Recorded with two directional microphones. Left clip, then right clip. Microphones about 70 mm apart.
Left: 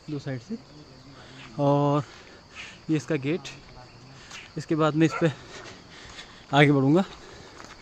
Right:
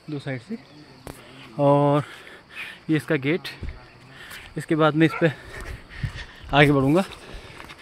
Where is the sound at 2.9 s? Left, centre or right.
Right.